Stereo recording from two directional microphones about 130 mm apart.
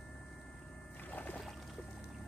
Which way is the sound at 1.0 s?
15° left (ahead or behind).